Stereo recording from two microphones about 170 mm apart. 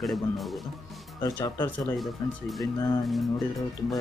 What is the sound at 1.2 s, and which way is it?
Speech, 20° left (ahead or behind).